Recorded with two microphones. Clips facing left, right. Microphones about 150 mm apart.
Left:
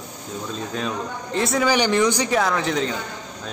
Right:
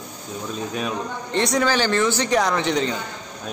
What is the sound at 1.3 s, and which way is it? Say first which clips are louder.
Speech: right 1 dB; 5° left (ahead or behind).